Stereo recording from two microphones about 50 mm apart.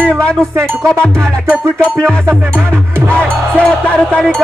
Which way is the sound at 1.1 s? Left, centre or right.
Right.